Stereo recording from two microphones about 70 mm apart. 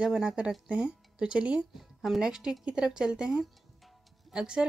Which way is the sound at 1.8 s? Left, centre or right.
Centre.